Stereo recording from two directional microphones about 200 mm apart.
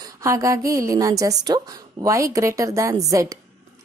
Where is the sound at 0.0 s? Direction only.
15° right (ahead or behind).